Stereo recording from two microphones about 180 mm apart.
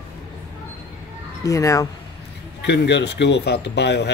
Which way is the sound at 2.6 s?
70° left (ahead or behind).